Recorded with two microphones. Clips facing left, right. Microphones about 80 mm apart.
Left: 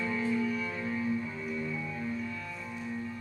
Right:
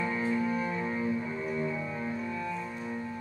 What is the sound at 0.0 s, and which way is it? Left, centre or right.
Cello, right.